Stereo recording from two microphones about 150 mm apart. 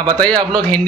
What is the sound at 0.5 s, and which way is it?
Speech, 10° left (ahead or behind).